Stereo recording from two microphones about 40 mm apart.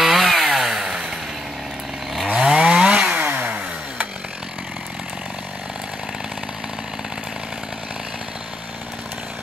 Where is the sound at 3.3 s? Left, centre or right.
Right.